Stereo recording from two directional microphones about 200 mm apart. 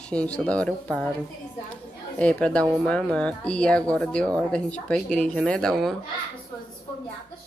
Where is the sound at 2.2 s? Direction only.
5° left (ahead or behind).